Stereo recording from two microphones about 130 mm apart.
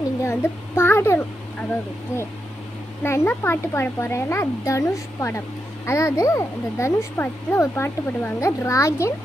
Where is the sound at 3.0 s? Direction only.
20° left (ahead or behind).